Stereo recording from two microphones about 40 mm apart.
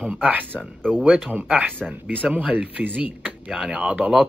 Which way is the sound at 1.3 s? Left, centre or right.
Right.